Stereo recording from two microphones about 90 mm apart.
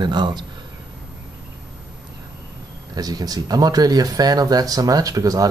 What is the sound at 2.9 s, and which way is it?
Speech, 45° right (ahead or behind).